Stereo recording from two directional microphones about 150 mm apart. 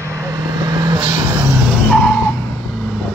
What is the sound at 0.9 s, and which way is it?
Vehicle, 35° right (ahead or behind).